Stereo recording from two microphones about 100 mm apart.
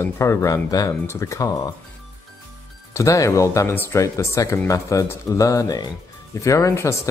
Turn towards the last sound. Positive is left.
turn(degrees=30)  # may be behind; listen again after turning